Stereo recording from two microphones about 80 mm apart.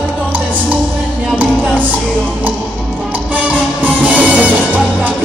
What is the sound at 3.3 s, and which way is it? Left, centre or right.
Music, centre.